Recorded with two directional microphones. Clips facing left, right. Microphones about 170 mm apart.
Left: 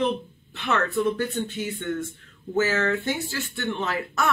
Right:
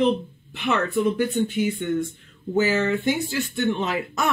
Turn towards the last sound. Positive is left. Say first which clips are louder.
# right 2 dB
turn(degrees=-15)  # may be behind; listen again after turning